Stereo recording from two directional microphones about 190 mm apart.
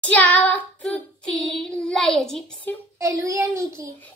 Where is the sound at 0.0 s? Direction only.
10° left (ahead or behind).